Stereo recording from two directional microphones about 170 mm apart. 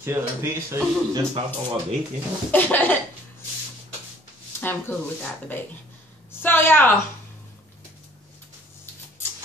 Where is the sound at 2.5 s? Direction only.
10° left (ahead or behind).